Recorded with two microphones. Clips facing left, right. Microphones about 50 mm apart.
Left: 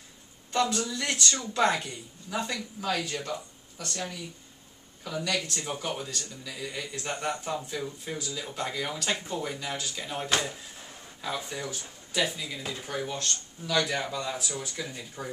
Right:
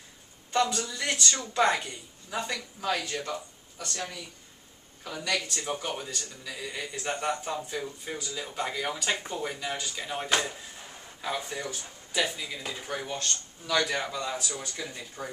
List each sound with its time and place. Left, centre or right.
0.5 s a man's voice: centre
5.0 s speech: centre